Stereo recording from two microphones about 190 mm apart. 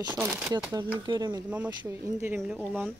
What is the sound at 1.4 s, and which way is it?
Speech, 5° right (ahead or behind).